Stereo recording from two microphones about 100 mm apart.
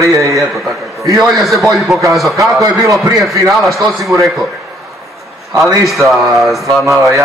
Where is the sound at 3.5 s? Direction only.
Centre (ahead or behind).